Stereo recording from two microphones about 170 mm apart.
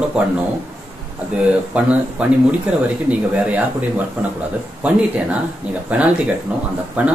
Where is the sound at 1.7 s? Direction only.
5° right (ahead or behind).